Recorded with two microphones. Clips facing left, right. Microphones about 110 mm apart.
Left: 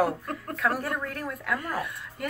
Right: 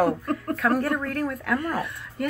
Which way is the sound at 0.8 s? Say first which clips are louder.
Right 6 dB; 60° right (ahead or behind).